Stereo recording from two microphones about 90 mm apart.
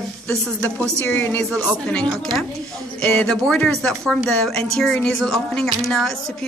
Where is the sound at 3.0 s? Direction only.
5° left (ahead or behind).